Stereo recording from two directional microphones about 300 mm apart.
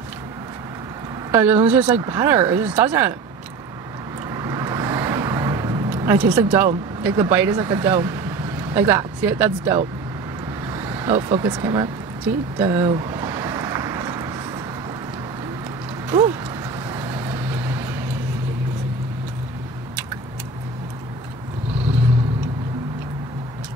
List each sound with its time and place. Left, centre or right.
1.3 s speech: centre
4.3 s vehicle: centre
7.0 s speech: centre
12.5 s vehicle: centre
16.1 s speech: centre
16.9 s vehicle: centre